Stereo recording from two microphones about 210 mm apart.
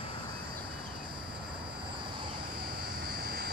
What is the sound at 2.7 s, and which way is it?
Vehicle, 45° right (ahead or behind).